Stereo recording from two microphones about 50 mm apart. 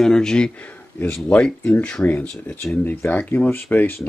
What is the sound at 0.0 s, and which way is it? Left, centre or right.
Speech, centre.